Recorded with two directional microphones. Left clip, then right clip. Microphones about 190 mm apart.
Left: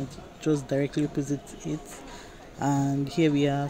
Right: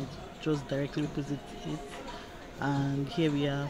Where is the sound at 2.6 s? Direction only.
25° left (ahead or behind).